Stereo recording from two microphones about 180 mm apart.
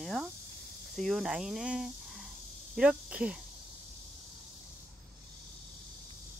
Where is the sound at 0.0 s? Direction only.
Centre (ahead or behind).